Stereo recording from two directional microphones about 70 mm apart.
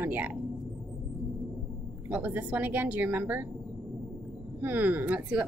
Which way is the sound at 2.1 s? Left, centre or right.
Right.